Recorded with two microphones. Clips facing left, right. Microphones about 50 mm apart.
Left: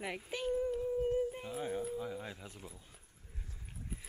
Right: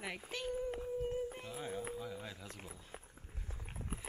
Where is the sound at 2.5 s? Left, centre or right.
Right.